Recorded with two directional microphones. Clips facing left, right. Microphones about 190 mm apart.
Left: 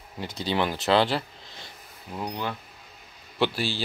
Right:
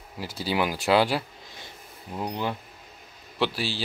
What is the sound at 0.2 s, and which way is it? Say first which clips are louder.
A man's voice: even; 5° right (ahead or behind).